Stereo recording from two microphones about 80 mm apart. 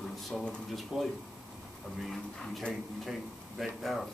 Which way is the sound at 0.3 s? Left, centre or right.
Centre.